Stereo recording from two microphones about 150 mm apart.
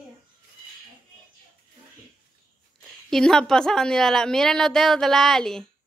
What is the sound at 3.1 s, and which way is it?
A woman's voice, 5° left (ahead or behind).